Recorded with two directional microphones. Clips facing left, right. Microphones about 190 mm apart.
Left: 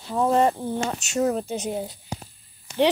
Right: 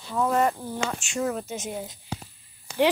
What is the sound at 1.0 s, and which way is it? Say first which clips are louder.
Speech: left 5 dB; 40° left (ahead or behind).